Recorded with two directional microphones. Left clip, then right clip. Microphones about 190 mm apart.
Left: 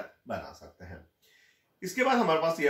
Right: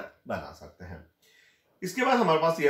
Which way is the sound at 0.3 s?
15° right (ahead or behind).